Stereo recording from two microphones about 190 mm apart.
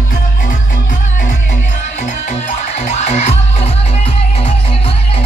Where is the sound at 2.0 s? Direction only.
35° left (ahead or behind).